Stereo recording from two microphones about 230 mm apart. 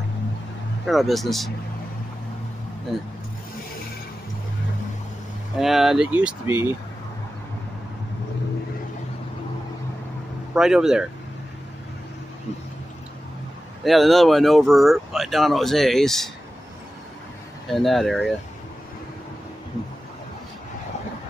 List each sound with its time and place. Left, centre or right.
0.8 s speech: centre
5.6 s speech: centre
10.5 s speech: centre
13.8 s speech: centre
17.6 s speech: centre